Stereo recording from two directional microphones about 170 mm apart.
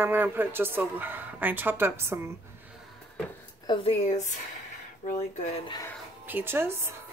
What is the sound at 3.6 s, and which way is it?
Speech, 30° left (ahead or behind).